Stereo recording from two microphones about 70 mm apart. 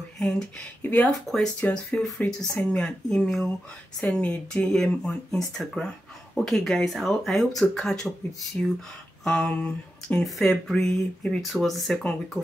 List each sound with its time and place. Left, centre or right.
0.2 s speech: centre
0.8 s speech: left
1.6 s speech: centre
4.0 s speech: centre
4.6 s speech: centre
9.2 s a sound: centre
10.2 s speech: centre